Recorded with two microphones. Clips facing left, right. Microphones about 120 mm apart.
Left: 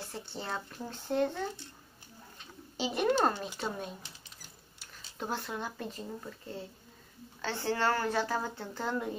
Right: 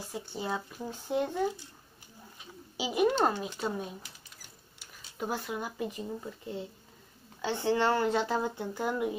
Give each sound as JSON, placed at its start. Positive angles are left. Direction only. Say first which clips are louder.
{"t": 0.0, "sound": "speech", "louder": "right 4 dB", "side_deg": -10}
{"t": 2.8, "sound": "speech", "louder": "right 2 dB", "side_deg": -10}
{"t": 5.2, "sound": "speech", "louder": "right 2 dB", "side_deg": -5}